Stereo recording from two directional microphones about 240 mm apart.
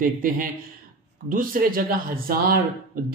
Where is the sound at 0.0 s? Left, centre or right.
Right.